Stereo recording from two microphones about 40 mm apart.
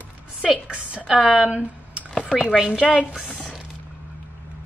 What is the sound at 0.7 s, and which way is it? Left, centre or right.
Speech, right.